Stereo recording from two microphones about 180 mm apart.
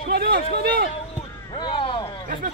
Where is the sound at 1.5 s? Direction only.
30° left (ahead or behind).